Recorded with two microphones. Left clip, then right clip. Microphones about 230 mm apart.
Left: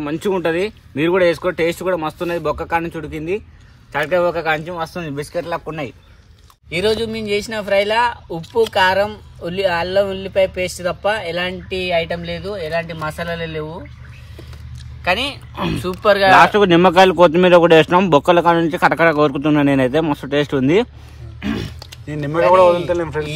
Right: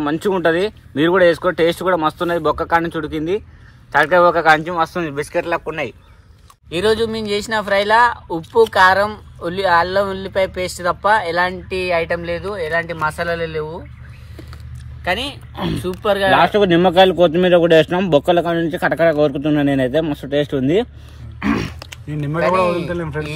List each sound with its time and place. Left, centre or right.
0.0 s speech: centre
5.4 s speech: right
7.6 s speech: centre
15.0 s speech: centre
16.0 s speech: left
16.4 s speech: centre
22.0 s speech: left